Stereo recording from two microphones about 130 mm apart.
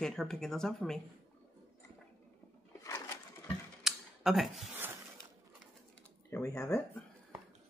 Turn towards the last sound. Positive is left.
turn(degrees=25)  # may be behind; listen again after turning